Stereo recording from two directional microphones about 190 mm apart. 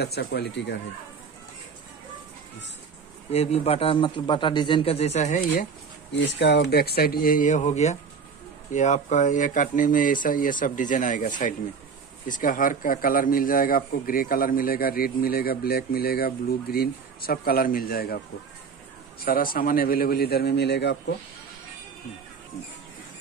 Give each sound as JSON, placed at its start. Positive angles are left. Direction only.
{"t": 0.0, "sound": "speech", "side_deg": 60}
{"t": 3.3, "sound": "a man's voice", "side_deg": 30}
{"t": 6.1, "sound": "a man's voice", "side_deg": 65}
{"t": 19.2, "sound": "speech", "side_deg": 50}